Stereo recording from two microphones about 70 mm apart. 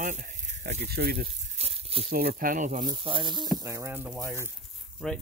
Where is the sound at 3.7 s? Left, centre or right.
Right.